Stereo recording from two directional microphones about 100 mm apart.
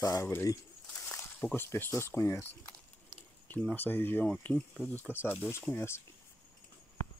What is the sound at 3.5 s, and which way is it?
Speech, 15° left (ahead or behind).